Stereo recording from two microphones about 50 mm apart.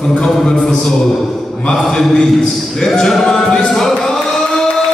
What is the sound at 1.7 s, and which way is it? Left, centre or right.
Speech, centre.